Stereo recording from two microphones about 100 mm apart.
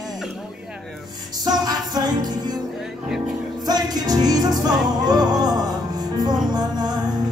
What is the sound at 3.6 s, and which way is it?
Music, 40° right (ahead or behind).